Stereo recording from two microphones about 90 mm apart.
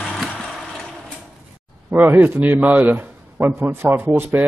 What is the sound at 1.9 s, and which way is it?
A man's voice, 25° right (ahead or behind).